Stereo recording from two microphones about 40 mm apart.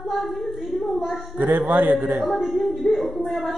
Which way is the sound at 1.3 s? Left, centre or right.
Right.